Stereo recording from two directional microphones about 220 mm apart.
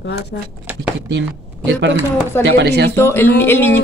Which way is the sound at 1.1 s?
55° right (ahead or behind).